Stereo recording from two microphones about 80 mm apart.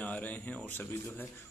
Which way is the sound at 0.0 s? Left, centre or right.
Centre.